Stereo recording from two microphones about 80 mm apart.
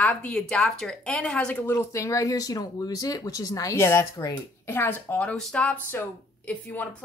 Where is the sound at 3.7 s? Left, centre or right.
Left.